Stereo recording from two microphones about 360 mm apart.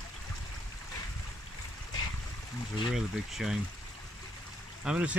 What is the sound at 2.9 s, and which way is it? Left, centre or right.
Speech, centre.